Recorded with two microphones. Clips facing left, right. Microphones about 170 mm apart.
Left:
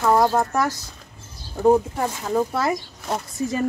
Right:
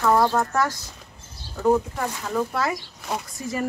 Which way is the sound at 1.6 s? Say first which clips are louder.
Left 3 dB; 25° left (ahead or behind).